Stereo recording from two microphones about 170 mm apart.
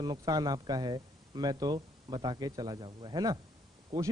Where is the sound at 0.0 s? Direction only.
25° right (ahead or behind).